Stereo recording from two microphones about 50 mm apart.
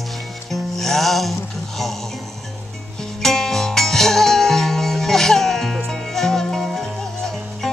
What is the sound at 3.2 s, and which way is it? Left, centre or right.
Music, centre.